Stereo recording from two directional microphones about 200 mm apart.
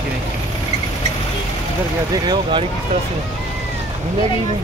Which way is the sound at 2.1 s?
20° right (ahead or behind).